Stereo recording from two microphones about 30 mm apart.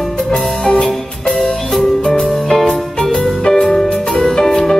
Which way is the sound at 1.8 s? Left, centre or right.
Left.